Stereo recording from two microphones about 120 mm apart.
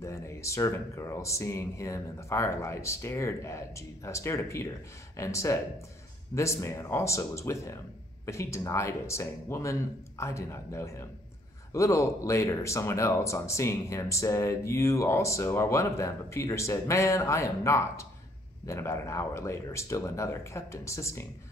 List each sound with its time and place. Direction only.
0.0 s speech: 25° left (ahead or behind)